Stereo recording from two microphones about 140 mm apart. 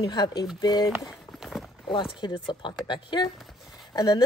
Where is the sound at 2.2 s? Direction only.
35° left (ahead or behind).